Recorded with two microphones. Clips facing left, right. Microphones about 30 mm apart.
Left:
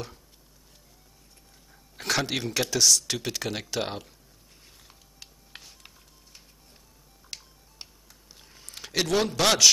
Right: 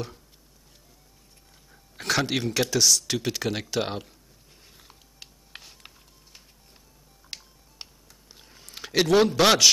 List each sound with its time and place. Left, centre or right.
1.7 s speech: centre
5.2 s music: centre
7.3 s music: right
8.4 s a sound: centre